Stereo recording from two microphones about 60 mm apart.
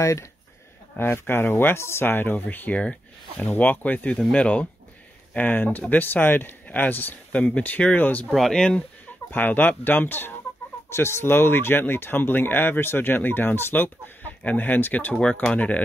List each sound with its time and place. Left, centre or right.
0.0 s speech: left
0.9 s speech: left; by 3.4 s centre
3.4 s speech: left
5.3 s speech: left
8.4 s speech: centre
9.3 s speech: left
10.9 s speech: left